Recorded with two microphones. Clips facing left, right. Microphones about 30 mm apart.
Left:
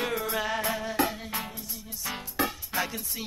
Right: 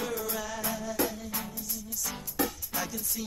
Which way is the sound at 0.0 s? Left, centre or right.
Left.